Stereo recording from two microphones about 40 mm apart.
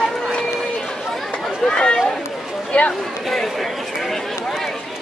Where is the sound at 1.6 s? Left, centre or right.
Left.